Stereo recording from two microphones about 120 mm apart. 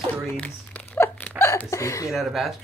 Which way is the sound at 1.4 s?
20° left (ahead or behind).